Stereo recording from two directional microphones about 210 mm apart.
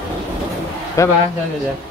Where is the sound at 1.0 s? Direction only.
15° left (ahead or behind).